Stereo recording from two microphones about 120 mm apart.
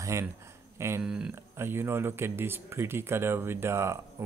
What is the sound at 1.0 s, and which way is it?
Speech, 5° right (ahead or behind).